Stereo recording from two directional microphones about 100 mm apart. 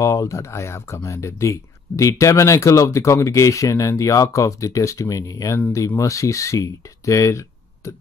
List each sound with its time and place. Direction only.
0.0 s speech: 30° left (ahead or behind)